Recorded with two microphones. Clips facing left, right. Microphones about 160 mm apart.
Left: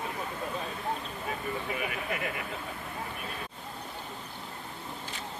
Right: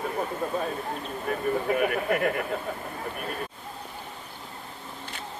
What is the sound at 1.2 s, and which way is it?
Speech, 50° right (ahead or behind).